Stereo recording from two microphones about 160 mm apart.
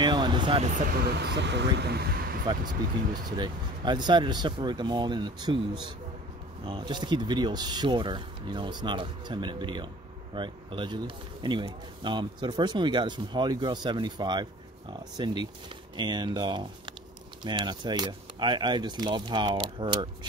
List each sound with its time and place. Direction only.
0.0 s speech: 30° right (ahead or behind)
0.7 s speech: 50° right (ahead or behind)
0.9 s speech: 90° right
2.4 s speech: 25° right (ahead or behind)